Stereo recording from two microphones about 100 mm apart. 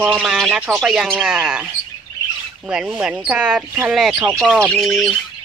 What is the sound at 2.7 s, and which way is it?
Speech, 10° right (ahead or behind).